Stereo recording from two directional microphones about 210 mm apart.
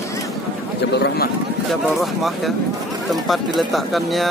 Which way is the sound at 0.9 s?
50° left (ahead or behind).